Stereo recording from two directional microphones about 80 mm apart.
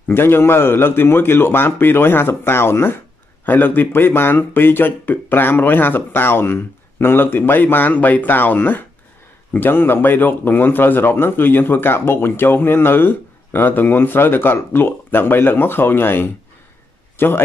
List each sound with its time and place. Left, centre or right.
0.1 s a man's voice: left